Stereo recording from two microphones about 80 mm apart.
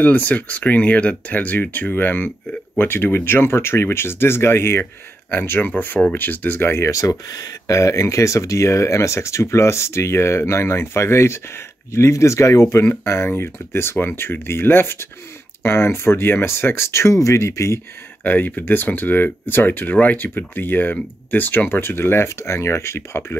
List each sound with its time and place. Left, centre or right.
0.0 s speech: left
6.9 s speech: left
18.2 s speech: centre